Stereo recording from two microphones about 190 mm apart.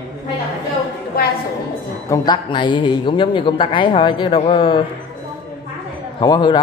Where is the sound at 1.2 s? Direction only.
50° left (ahead or behind).